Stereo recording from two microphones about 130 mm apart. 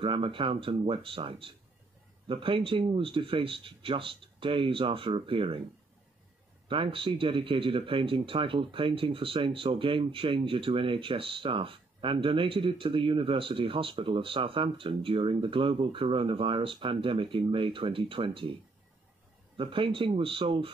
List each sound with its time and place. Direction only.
0.0 s speech: 45° right (ahead or behind)
6.7 s speech: 40° right (ahead or behind)
19.5 s speech: 40° right (ahead or behind)